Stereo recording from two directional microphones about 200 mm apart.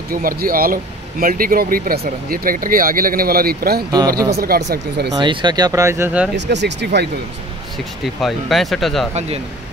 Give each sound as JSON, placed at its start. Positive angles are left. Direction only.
{"t": 0.1, "sound": "speech", "side_deg": -45}
{"t": 5.1, "sound": "speech", "side_deg": -25}
{"t": 6.3, "sound": "speech", "side_deg": -60}
{"t": 8.2, "sound": "speech", "side_deg": 0}